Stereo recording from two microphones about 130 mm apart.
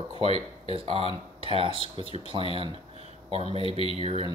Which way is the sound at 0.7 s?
45° right (ahead or behind).